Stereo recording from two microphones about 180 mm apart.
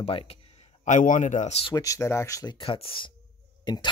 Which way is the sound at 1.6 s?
20° left (ahead or behind).